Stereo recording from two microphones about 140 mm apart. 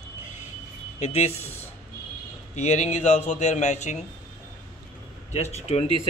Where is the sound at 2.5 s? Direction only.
55° left (ahead or behind).